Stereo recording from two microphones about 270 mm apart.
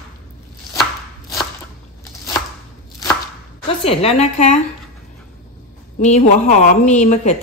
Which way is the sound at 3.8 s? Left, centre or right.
Left.